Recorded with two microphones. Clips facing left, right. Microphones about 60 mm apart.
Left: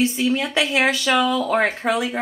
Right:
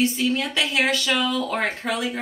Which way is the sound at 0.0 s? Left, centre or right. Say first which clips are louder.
Left 2 dB; centre.